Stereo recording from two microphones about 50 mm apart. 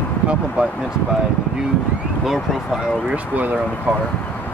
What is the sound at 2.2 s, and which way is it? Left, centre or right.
Speech, centre.